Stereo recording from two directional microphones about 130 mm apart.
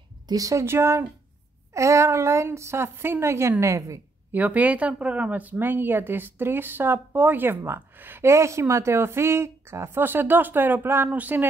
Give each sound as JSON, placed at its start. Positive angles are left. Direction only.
{"t": 0.3, "sound": "a woman's voice", "side_deg": -25}
{"t": 4.4, "sound": "a woman's voice", "side_deg": -10}